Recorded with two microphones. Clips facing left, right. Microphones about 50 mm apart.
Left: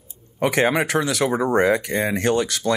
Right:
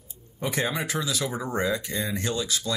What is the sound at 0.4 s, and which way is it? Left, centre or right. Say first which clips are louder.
Speech: left 9 dB; left.